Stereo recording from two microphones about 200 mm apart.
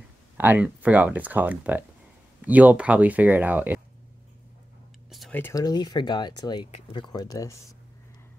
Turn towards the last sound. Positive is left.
turn(degrees=20)  # may be behind; listen again after turning